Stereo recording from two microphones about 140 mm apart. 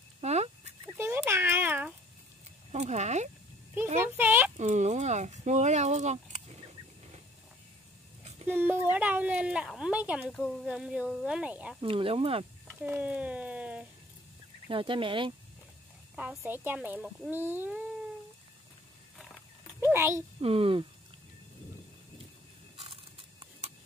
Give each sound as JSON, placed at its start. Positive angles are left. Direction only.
{"t": 0.2, "sound": "a sound", "side_deg": -50}
{"t": 0.9, "sound": "a sound", "side_deg": -15}
{"t": 2.7, "sound": "a sound", "side_deg": -55}
{"t": 4.2, "sound": "speech", "side_deg": -15}
{"t": 4.6, "sound": "speech", "side_deg": -55}
{"t": 8.5, "sound": "speech", "side_deg": -15}
{"t": 11.8, "sound": "speech", "side_deg": -40}
{"t": 12.8, "sound": "speech", "side_deg": -10}
{"t": 14.7, "sound": "speech", "side_deg": -40}
{"t": 16.2, "sound": "speech", "side_deg": -10}
{"t": 19.8, "sound": "a child's voice", "side_deg": -15}
{"t": 20.3, "sound": "speech", "side_deg": -40}